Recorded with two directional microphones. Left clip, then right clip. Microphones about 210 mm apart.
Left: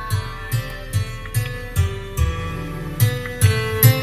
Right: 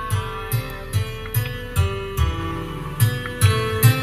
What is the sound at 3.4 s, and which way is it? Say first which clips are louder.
Music: right 1 dB; 50° left (ahead or behind).